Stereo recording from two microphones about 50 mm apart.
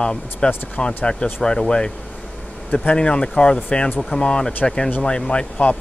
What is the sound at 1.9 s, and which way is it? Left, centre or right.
Air conditioning, centre.